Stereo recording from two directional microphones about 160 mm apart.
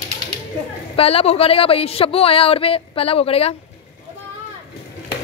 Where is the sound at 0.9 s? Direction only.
35° left (ahead or behind).